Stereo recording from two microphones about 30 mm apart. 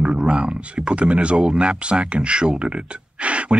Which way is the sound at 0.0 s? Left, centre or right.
Right.